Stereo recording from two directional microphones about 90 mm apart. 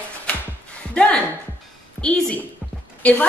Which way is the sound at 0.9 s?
10° left (ahead or behind).